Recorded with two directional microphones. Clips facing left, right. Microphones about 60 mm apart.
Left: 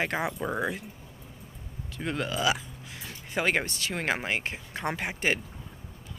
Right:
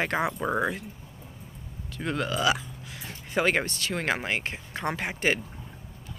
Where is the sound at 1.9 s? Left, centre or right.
Centre.